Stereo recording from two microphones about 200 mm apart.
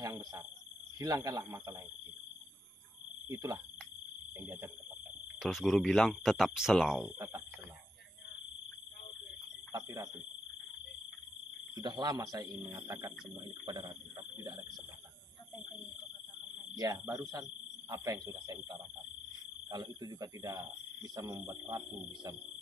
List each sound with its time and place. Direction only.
0.0 s cricket: 15° right (ahead or behind)
0.9 s speech: 15° right (ahead or behind)
3.3 s speech: 15° right (ahead or behind)
5.4 s speech: centre (ahead or behind)
9.7 s speech: 15° right (ahead or behind)
11.7 s speech: 20° right (ahead or behind)
16.7 s speech: 20° right (ahead or behind)